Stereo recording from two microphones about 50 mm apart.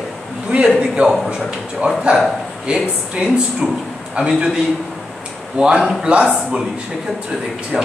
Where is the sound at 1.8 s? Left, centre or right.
Centre.